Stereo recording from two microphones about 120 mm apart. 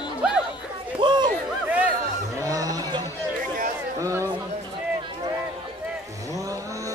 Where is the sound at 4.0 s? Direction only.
25° right (ahead or behind).